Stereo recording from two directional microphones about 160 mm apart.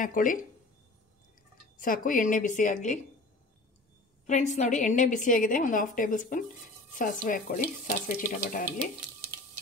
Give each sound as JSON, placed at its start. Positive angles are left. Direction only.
{"t": 0.0, "sound": "speech", "side_deg": 55}
{"t": 1.8, "sound": "speech", "side_deg": 60}
{"t": 4.3, "sound": "a woman's voice", "side_deg": 50}